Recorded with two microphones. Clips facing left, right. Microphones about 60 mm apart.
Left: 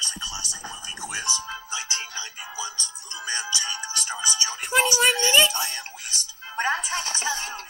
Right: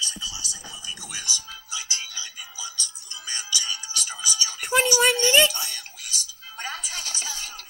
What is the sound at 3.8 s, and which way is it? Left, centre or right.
Music, left.